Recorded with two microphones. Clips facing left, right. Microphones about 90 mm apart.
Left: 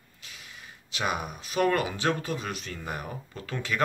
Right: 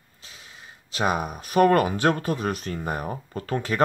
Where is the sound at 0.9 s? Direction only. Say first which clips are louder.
Right 6 dB; 40° right (ahead or behind).